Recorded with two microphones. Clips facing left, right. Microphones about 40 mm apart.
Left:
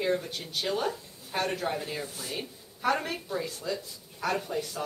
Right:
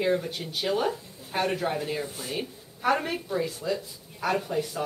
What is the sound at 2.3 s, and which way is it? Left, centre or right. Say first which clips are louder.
A woman's voice: right 4 dB; centre.